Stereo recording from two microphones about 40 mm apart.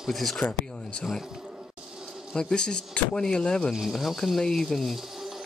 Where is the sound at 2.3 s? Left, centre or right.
Left.